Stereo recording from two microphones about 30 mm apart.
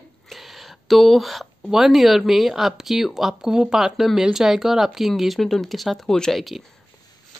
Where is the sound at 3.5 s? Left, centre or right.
Right.